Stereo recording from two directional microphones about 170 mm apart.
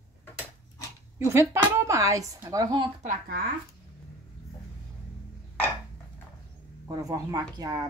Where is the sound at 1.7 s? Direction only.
20° right (ahead or behind).